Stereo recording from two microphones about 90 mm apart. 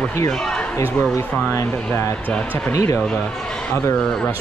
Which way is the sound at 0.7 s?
35° left (ahead or behind).